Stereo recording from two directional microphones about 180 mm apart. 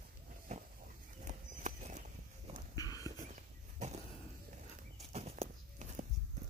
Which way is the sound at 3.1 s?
40° right (ahead or behind).